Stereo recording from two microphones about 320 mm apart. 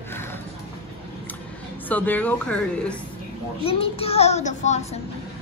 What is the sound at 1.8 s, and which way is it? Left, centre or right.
Speech, centre.